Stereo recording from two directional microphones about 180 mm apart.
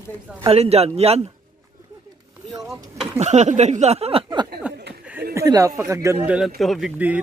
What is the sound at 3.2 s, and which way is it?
A man's voice, 40° right (ahead or behind).